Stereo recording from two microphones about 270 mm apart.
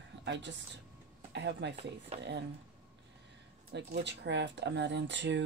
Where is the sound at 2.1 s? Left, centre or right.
Right.